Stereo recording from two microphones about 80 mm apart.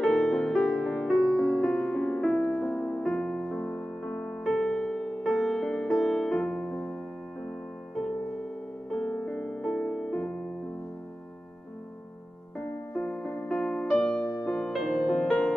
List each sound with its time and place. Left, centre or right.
0.0 s music: centre
2.6 s music: left
3.0 s music: centre
4.4 s music: centre
8.9 s music: centre
12.9 s music: centre